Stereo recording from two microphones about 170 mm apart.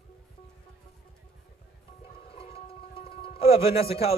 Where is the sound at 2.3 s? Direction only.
35° left (ahead or behind).